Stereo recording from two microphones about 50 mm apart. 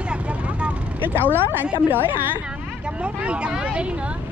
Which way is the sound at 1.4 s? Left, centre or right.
Right.